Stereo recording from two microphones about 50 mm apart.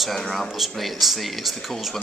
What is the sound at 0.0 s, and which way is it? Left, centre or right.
A man's voice, centre.